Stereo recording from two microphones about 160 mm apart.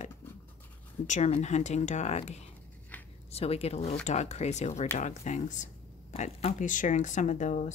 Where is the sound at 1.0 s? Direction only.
45° left (ahead or behind).